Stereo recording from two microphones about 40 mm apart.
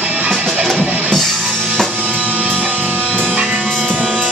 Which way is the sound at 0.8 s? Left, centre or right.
Right.